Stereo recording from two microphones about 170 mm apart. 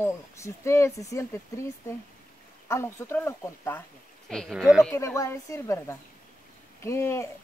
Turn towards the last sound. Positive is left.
turn(degrees=15)  # may be behind; listen again after turning